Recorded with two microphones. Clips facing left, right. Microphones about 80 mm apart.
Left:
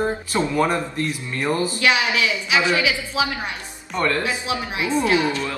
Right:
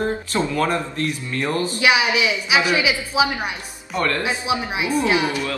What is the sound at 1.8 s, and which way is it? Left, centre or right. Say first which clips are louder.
A woman's voice: right 4 dB; centre.